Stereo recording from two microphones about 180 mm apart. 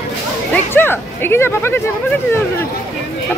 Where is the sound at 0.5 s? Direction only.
10° left (ahead or behind).